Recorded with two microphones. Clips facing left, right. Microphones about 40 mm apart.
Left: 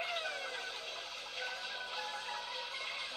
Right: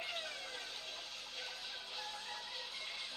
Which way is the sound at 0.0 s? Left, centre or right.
Left.